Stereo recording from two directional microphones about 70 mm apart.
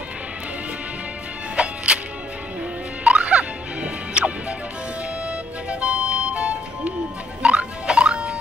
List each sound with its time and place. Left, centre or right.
1.6 s music: centre
3.0 s music: centre
5.7 s music: centre